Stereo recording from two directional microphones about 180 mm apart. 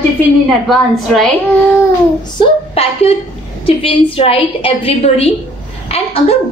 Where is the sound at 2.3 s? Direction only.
35° left (ahead or behind).